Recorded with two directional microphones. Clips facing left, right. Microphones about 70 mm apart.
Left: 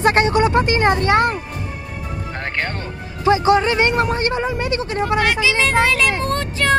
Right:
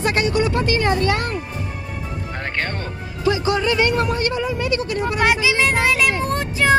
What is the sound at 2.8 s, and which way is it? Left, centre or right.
Speech, left.